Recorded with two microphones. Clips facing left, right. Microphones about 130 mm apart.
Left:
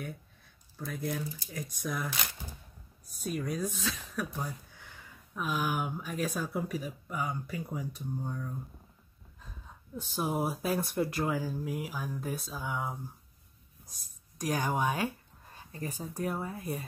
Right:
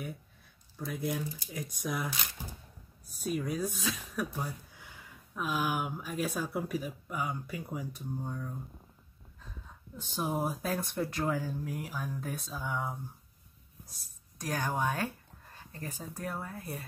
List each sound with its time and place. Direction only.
0.7 s speech: 10° right (ahead or behind)
3.2 s speech: 5° right (ahead or behind)
9.9 s speech: 10° left (ahead or behind)
13.9 s speech: 15° left (ahead or behind)